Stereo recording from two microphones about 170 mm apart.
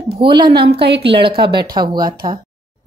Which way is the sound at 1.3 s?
70° right (ahead or behind).